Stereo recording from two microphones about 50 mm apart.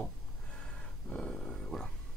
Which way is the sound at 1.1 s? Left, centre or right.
Centre.